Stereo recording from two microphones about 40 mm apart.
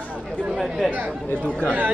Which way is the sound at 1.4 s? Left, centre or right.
Left.